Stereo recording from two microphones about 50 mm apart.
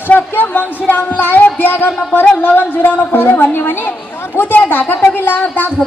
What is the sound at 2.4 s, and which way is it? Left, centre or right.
A woman's voice, left.